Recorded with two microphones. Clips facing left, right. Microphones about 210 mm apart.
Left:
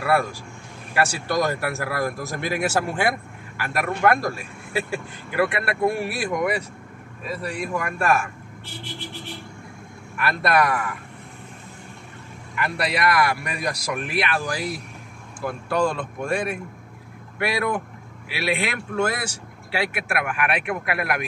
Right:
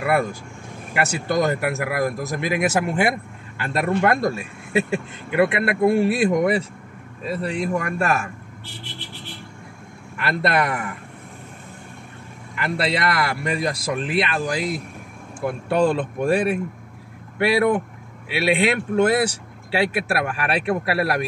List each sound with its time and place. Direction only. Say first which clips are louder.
0.9 s speech: right 1 dB; 20° right (ahead or behind)
10.1 s speech: even; 25° right (ahead or behind)
12.5 s speech: right 2 dB; 25° right (ahead or behind)